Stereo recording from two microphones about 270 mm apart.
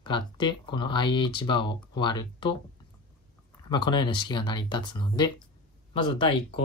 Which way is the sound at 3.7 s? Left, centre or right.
Centre.